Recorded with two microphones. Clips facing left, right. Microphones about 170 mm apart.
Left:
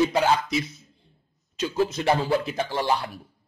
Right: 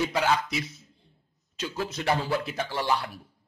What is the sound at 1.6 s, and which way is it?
Speech, 25° left (ahead or behind).